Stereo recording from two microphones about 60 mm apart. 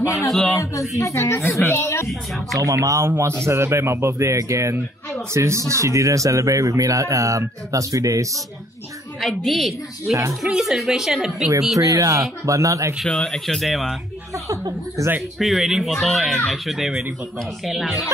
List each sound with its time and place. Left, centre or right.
0.3 s speech: centre
0.6 s speech: left
2.6 s speech: right
3.1 s a man's voice: right
9.2 s speech: centre
11.8 s speech: right
13.1 s speech: centre
14.5 s speech: right
15.3 s speech: centre